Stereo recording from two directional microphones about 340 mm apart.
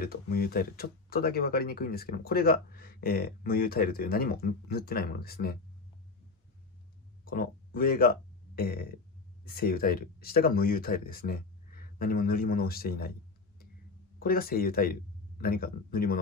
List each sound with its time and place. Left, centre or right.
0.0 s speech: left
7.2 s speech: left
14.2 s speech: left